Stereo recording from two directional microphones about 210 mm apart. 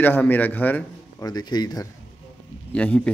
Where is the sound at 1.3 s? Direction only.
20° left (ahead or behind).